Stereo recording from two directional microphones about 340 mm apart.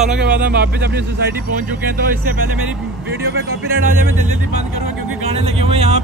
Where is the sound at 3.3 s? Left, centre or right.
Right.